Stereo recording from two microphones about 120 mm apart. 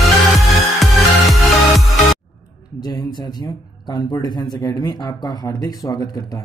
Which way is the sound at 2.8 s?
35° left (ahead or behind).